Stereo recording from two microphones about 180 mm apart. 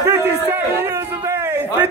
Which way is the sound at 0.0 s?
10° right (ahead or behind).